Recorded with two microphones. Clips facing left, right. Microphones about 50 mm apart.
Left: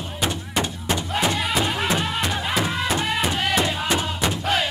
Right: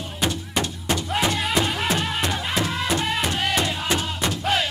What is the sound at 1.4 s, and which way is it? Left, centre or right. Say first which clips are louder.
Music: even; centre.